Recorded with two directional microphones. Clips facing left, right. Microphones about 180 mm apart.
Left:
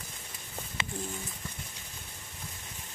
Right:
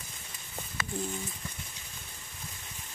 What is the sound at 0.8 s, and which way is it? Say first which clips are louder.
Bird: right 1 dB; 25° left (ahead or behind).